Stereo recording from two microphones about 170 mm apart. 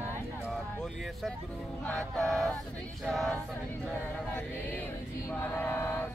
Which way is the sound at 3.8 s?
5° left (ahead or behind).